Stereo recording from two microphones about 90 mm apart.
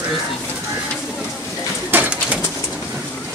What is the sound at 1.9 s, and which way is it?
Bird, 20° right (ahead or behind).